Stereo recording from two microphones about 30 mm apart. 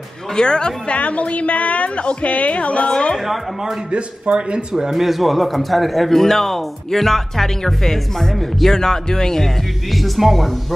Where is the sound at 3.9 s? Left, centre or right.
Right.